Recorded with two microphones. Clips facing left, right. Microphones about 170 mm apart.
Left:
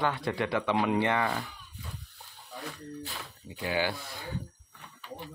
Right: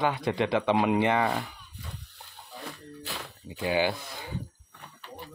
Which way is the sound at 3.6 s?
20° right (ahead or behind).